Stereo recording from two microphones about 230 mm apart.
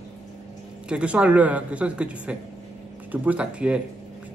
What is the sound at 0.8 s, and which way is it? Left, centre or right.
Speech, centre.